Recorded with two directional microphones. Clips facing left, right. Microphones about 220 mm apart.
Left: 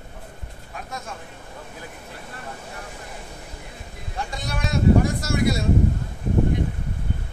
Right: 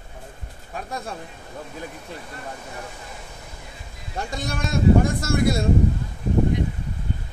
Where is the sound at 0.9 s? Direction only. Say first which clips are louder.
Right 3 dB; 35° right (ahead or behind).